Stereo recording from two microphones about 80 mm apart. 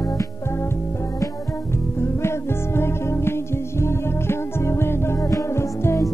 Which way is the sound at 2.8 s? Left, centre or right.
Left.